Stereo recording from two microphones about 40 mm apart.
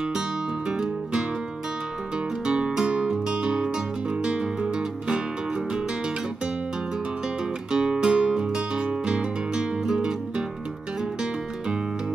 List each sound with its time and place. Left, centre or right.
0.7 s music: centre
2.4 s music: right
7.7 s music: centre